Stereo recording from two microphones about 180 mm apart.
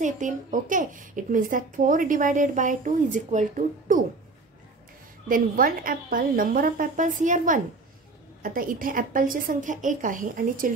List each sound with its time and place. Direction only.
0.0 s speech: 45° right (ahead or behind)
5.3 s speech: 50° right (ahead or behind)